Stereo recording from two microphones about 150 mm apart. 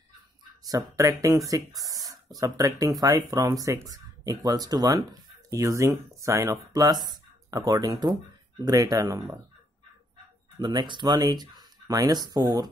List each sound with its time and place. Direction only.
0.7 s speech: 20° right (ahead or behind)
10.6 s speech: 30° right (ahead or behind)